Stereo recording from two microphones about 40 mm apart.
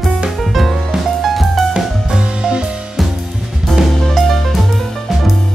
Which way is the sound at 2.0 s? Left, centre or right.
Right.